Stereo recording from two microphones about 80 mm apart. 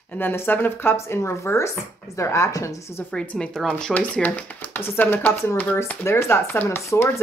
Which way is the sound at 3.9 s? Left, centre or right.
Centre.